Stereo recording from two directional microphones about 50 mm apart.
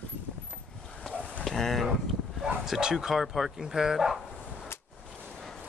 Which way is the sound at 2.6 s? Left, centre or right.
Centre.